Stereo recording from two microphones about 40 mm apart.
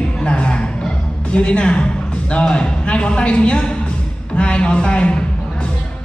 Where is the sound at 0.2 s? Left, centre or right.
Left.